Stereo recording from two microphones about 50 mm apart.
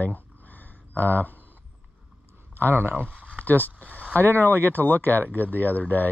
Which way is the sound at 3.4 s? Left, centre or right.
Left.